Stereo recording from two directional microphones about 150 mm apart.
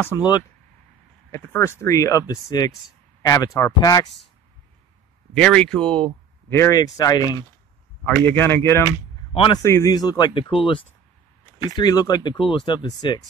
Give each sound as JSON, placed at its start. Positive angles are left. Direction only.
{"t": 0.1, "sound": "speech", "side_deg": 25}
{"t": 1.3, "sound": "speech", "side_deg": 15}
{"t": 5.3, "sound": "speech", "side_deg": 5}
{"t": 8.3, "sound": "speech", "side_deg": 15}
{"t": 9.3, "sound": "a man's voice", "side_deg": 35}
{"t": 9.6, "sound": "speech", "side_deg": 20}